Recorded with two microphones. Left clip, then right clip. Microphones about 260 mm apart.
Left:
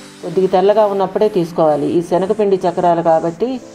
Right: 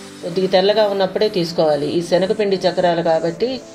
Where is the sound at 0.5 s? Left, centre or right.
Centre.